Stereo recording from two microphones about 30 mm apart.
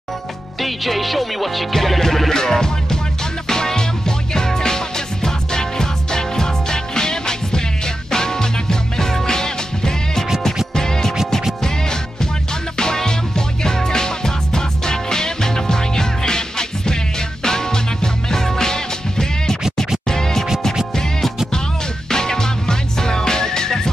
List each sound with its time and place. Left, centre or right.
0.6 s speech: centre
3.4 s music: centre
22.1 s music: left